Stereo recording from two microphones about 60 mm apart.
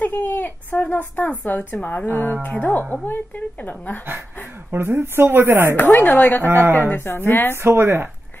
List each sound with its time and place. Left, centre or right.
0.0 s a sound: left
1.4 s a woman's voice: left
4.6 s speech: right
5.8 s a woman's voice: left
7.6 s speech: right